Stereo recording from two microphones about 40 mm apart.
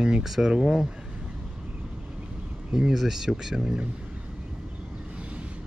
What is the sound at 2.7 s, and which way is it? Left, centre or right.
Speech, centre.